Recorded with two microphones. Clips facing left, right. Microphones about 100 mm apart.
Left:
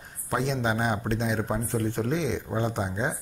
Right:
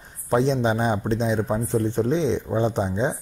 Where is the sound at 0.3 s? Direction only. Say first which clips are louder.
Right 6 dB; 25° right (ahead or behind).